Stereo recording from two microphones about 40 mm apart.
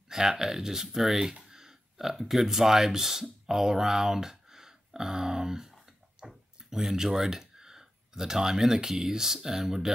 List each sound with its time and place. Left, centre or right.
0.1 s speech: centre